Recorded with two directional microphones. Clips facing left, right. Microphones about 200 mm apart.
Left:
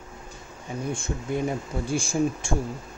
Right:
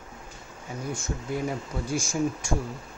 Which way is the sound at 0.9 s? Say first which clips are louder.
Left 1 dB; 25° left (ahead or behind).